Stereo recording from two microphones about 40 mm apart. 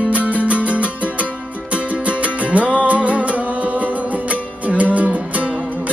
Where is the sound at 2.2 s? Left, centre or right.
Right.